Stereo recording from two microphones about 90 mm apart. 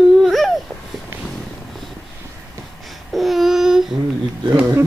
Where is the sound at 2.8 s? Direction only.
Centre (ahead or behind).